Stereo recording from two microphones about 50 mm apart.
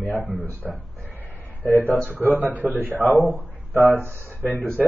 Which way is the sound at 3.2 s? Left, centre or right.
Right.